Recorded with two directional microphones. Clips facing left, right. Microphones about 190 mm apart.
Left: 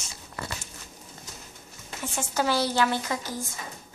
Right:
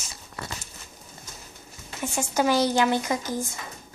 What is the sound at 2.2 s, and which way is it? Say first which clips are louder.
Speech: right 4 dB; 15° right (ahead or behind).